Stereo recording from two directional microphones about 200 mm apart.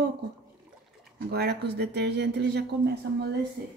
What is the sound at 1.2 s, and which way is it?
Speech, 55° right (ahead or behind).